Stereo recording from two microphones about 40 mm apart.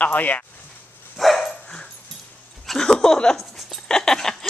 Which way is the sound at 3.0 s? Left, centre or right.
Centre.